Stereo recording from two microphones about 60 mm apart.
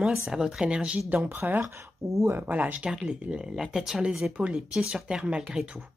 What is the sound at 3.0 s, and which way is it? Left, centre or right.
Speech, centre.